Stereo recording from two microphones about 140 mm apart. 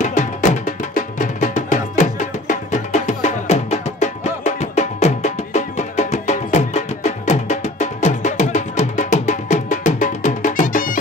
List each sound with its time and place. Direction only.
0.0 s music: 60° left (ahead or behind)